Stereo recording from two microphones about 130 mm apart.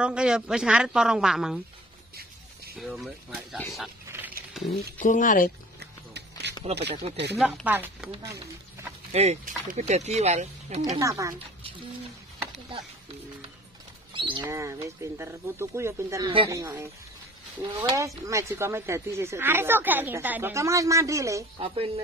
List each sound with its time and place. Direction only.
0.0 s a woman's voice: 5° right (ahead or behind)
2.8 s speech: centre (ahead or behind)
4.6 s a sound: 5° right (ahead or behind)
5.0 s speech: 90° left
6.6 s speech: 50° right (ahead or behind)
7.6 s speech: 15° right (ahead or behind)
9.1 s speech: 55° right (ahead or behind)
11.0 s speech: 25° right (ahead or behind)
14.1 s a sound: 40° right (ahead or behind)
14.4 s speech: 20° right (ahead or behind)
21.5 s speech: 45° right (ahead or behind)